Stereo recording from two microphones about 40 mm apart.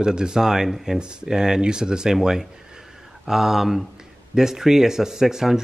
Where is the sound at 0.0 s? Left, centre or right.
Centre.